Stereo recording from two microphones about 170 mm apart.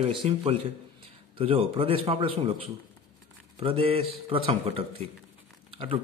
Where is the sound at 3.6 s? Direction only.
35° right (ahead or behind).